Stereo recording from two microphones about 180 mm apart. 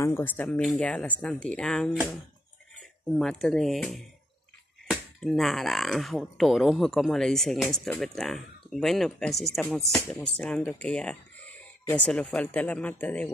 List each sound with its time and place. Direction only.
0.0 s speech: 10° left (ahead or behind)